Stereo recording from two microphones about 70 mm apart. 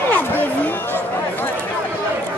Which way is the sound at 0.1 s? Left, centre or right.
Left.